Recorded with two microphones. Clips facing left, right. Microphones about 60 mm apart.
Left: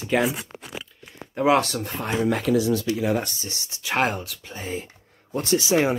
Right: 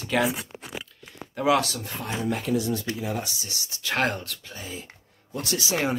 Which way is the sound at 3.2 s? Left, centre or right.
Left.